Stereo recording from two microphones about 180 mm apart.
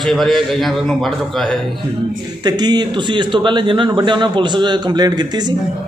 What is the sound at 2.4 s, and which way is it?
A man's voice, 25° right (ahead or behind).